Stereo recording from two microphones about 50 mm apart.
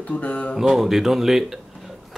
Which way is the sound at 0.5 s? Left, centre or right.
Centre.